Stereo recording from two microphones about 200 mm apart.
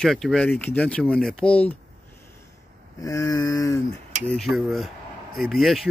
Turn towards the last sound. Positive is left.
turn(degrees=0)  # may be behind; listen again after turning